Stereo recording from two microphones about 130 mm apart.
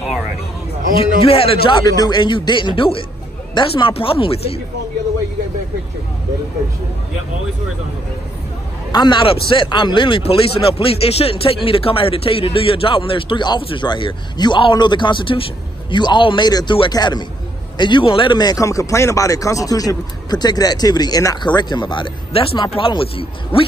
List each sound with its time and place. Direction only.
1.2 s speech: 45° left (ahead or behind)
1.9 s a man's voice: 30° left (ahead or behind)
8.9 s a man's voice: 35° left (ahead or behind)